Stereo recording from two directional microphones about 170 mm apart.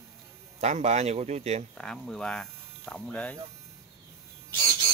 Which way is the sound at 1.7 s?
5° left (ahead or behind).